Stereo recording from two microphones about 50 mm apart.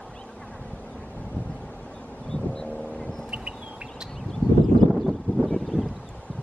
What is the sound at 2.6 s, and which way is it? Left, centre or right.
Vehicle, left.